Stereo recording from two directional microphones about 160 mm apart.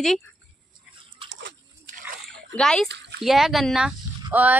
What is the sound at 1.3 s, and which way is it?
Splash, 75° right (ahead or behind).